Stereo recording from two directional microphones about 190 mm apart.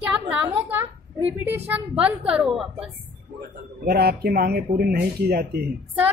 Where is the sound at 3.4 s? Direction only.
55° right (ahead or behind).